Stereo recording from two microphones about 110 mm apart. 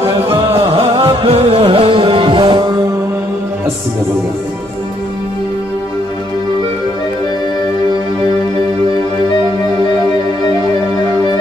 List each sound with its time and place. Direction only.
0.3 s music: 60° right (ahead or behind)